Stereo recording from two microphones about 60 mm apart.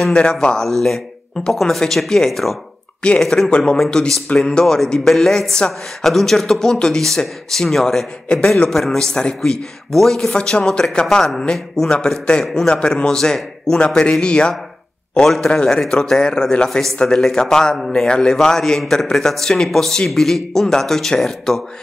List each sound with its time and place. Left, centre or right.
0.1 s speech: centre